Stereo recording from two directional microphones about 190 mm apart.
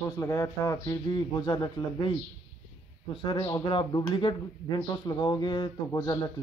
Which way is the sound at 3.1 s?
25° left (ahead or behind).